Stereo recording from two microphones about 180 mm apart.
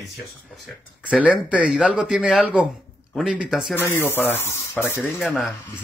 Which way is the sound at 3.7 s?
10° left (ahead or behind).